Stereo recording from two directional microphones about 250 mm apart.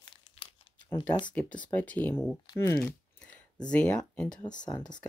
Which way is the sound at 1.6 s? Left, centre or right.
Centre.